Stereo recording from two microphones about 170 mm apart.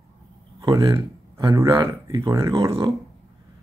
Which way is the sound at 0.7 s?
30° right (ahead or behind).